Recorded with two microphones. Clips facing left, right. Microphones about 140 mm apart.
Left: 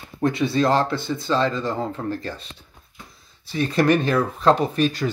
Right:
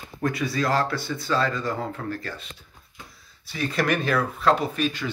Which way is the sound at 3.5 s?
30° left (ahead or behind).